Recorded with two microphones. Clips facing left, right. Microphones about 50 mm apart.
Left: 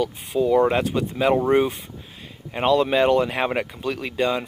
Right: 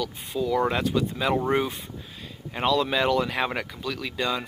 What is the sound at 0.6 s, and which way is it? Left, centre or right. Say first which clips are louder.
Speech: left 5 dB; left.